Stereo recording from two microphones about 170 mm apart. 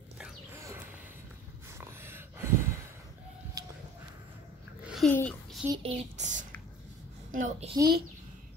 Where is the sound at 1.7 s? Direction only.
15° right (ahead or behind).